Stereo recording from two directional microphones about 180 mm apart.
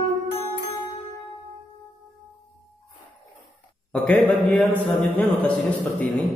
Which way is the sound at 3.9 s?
5° left (ahead or behind).